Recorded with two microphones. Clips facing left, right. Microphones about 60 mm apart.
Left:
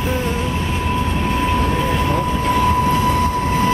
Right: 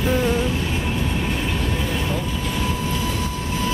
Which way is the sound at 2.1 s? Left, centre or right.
Left.